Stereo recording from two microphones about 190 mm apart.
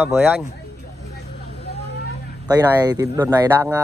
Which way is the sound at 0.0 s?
10° right (ahead or behind).